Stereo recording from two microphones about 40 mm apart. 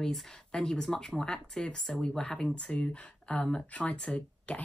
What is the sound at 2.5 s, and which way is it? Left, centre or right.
Speech, left.